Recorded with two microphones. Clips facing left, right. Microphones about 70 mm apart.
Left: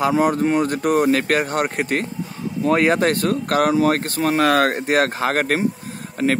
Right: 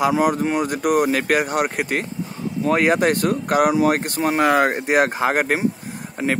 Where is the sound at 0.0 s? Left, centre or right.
Centre.